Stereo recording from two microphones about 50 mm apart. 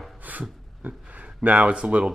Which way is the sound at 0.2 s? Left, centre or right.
Right.